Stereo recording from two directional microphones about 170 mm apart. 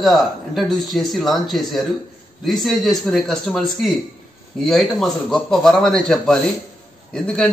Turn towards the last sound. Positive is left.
turn(degrees=5)  # may be behind; listen again after turning